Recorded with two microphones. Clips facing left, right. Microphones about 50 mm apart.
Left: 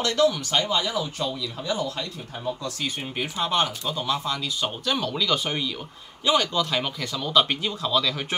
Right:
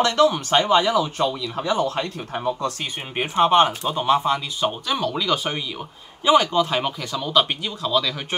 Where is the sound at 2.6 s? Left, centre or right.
Right.